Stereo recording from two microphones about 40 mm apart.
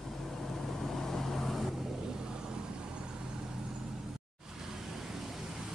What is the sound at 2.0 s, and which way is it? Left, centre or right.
Vehicle, centre.